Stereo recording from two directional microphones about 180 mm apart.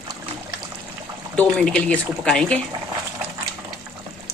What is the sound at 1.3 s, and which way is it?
Speech, 5° left (ahead or behind).